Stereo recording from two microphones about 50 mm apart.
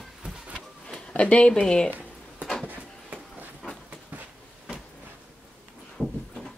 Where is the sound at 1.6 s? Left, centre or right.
Centre.